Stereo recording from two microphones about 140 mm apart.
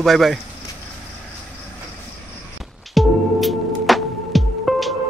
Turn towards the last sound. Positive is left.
turn(degrees=0)  # may be behind; listen again after turning